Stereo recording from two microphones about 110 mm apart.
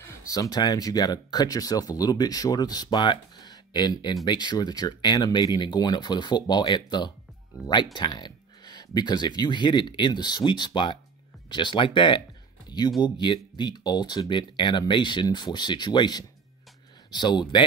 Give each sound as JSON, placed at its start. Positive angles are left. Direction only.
{"t": 0.0, "sound": "speech", "side_deg": 35}
{"t": 12.6, "sound": "a sound", "side_deg": 40}
{"t": 13.0, "sound": "speech", "side_deg": 45}